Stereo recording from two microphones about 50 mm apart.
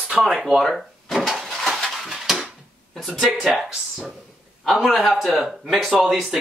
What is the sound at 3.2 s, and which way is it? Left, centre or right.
Speech, centre.